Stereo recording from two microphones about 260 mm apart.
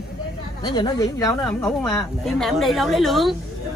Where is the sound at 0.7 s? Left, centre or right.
Centre.